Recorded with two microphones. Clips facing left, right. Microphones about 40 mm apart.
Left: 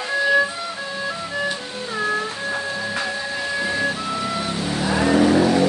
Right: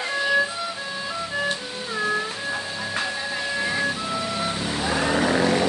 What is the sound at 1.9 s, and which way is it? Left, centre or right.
Cat, centre.